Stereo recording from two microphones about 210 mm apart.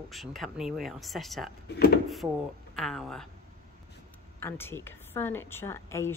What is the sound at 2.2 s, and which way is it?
Speech, 15° right (ahead or behind).